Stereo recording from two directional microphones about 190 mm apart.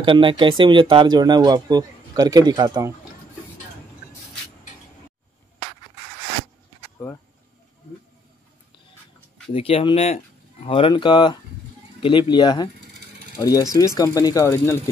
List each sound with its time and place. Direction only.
0.0 s speech: 25° right (ahead or behind)
9.5 s speech: 30° left (ahead or behind); by 14.8 s 15° left (ahead or behind)